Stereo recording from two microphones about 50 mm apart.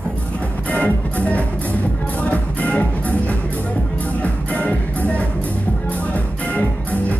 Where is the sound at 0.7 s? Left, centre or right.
Left.